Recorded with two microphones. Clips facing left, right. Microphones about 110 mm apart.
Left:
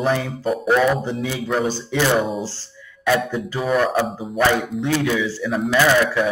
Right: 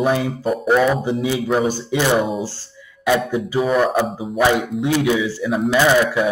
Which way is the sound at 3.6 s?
Centre (ahead or behind).